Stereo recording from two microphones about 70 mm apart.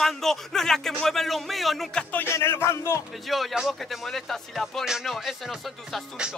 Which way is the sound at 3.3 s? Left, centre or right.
Centre.